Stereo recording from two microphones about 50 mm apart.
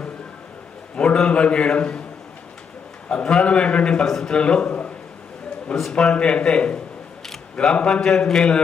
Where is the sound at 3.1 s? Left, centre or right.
Centre.